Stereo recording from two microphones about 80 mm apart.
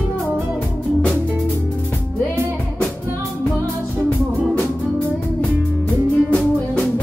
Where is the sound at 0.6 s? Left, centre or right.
Centre.